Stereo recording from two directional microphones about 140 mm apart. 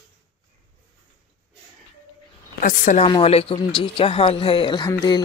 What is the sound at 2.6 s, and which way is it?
Speech, 80° left.